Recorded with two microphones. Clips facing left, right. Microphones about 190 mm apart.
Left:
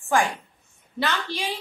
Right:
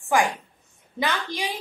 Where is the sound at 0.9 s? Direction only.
15° right (ahead or behind).